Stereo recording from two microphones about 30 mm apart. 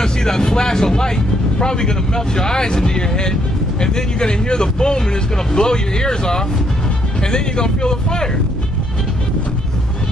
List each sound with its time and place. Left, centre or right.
0.0 s speech: left